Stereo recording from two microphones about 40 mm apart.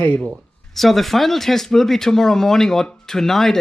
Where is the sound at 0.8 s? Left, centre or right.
Centre.